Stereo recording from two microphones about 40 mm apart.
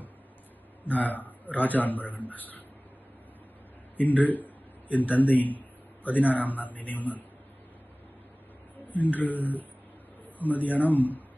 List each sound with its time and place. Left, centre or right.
0.8 s a man's voice: left
3.9 s a man's voice: left
8.8 s a man's voice: left